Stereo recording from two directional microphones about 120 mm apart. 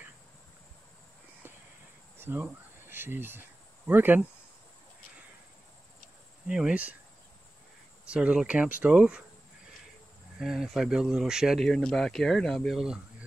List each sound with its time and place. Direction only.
2.1 s speech: 15° right (ahead or behind)
6.4 s speech: 5° right (ahead or behind)
8.1 s speech: 10° right (ahead or behind)
10.4 s speech: centre (ahead or behind)